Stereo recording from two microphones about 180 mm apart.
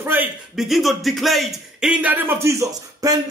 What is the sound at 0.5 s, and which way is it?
A man's voice, centre (ahead or behind).